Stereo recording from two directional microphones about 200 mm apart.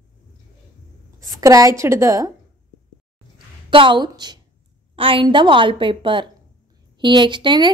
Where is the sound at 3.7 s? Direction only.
25° right (ahead or behind).